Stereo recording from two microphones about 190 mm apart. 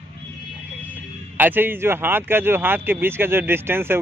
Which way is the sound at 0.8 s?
10° right (ahead or behind).